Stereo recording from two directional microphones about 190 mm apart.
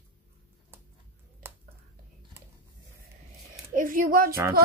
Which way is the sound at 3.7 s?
45° right (ahead or behind).